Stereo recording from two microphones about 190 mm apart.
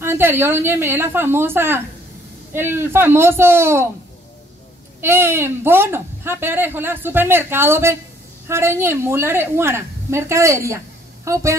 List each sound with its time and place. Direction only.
0.0 s a woman's voice: 10° right (ahead or behind)
5.0 s a woman's voice: 10° right (ahead or behind)